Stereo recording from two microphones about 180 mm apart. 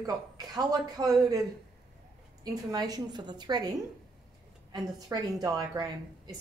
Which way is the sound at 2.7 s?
20° right (ahead or behind).